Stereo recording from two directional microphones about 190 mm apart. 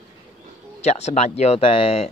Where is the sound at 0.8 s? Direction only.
35° left (ahead or behind).